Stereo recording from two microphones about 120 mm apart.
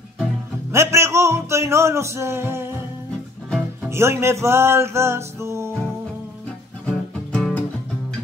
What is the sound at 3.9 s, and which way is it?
Music, 20° right (ahead or behind).